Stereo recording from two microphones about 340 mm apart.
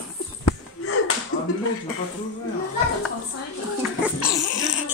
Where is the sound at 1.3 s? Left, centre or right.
Left.